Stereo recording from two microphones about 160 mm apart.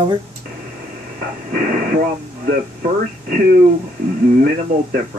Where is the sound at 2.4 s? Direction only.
60° right (ahead or behind).